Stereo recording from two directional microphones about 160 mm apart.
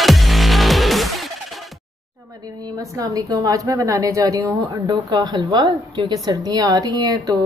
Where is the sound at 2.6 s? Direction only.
20° right (ahead or behind).